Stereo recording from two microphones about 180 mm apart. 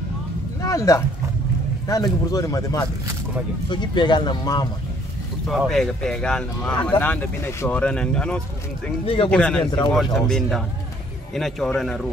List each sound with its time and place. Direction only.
0.6 s a sound: 20° left (ahead or behind)
1.9 s speech: 20° left (ahead or behind)
5.5 s speech: centre (ahead or behind)
9.0 s speech: 30° left (ahead or behind)
9.3 s speech: 5° left (ahead or behind)